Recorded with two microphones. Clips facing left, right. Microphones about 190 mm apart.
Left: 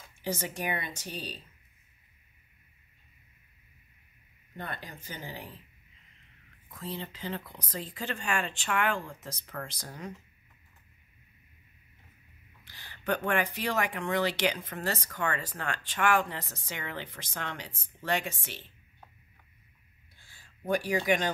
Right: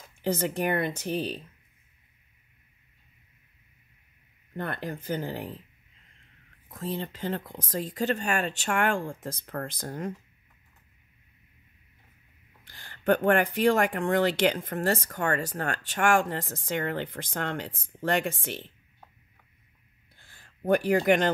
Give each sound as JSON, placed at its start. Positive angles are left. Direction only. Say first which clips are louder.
{"t": 0.0, "sound": "speech", "louder": "right 7 dB", "side_deg": -55}
{"t": 4.6, "sound": "speech", "louder": "right 8 dB", "side_deg": -55}
{"t": 6.7, "sound": "speech", "louder": "right 6 dB", "side_deg": -45}
{"t": 12.6, "sound": "speech", "louder": "right 8 dB", "side_deg": -50}
{"t": 20.2, "sound": "a sound", "louder": "right 8 dB", "side_deg": -55}